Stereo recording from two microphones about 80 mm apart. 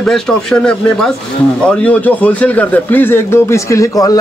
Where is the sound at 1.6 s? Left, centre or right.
Centre.